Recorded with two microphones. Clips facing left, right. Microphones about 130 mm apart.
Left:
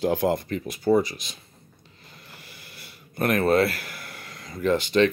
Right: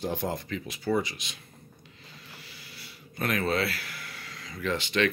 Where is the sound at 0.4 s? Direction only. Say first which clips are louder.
Left 5 dB; 50° left (ahead or behind).